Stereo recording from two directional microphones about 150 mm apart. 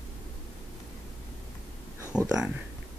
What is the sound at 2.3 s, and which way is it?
Speech, 5° right (ahead or behind).